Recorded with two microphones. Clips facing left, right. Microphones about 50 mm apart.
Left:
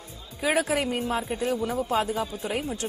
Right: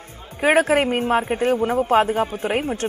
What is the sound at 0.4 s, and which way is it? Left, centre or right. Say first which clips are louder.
A man's voice: right 8 dB; right.